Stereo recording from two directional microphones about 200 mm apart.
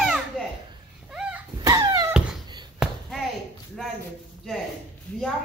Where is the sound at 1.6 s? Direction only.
20° right (ahead or behind).